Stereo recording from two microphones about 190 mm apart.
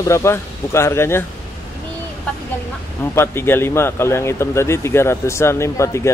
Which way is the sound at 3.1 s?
10° left (ahead or behind).